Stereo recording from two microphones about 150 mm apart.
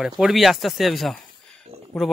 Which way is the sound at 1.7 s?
45° right (ahead or behind).